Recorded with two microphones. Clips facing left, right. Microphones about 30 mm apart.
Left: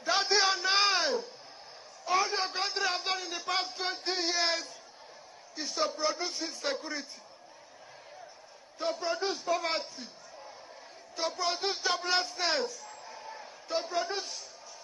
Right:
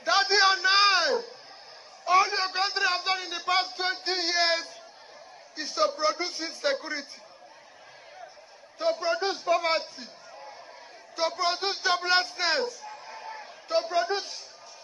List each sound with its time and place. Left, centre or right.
0.0 s a sound: right
5.6 s speech: centre
8.7 s a man's voice: right